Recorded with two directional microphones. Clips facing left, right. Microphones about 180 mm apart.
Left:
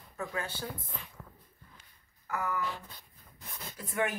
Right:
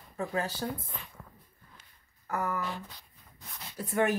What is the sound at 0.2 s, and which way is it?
Speech, 35° right (ahead or behind).